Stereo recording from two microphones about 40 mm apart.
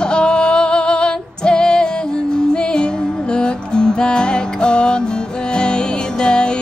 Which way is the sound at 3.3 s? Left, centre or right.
Left.